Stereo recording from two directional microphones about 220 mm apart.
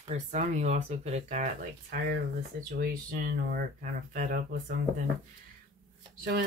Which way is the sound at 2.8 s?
40° right (ahead or behind).